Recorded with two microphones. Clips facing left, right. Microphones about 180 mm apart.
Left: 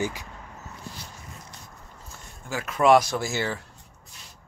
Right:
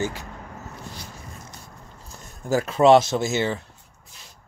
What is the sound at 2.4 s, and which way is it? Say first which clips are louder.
Speech: right 5 dB; 35° right (ahead or behind).